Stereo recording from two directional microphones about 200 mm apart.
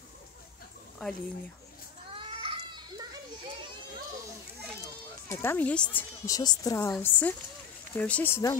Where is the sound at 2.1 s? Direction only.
25° right (ahead or behind).